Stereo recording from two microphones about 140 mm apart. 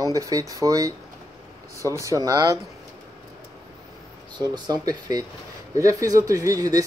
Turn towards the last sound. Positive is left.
turn(degrees=-25)  # may be behind; listen again after turning